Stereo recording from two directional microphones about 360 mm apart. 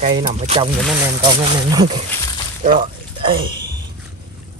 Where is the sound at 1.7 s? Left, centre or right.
Centre.